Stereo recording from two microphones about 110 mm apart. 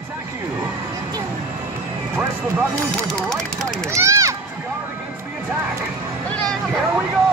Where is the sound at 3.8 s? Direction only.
25° right (ahead or behind).